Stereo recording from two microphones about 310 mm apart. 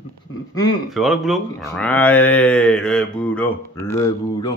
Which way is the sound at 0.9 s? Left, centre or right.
Centre.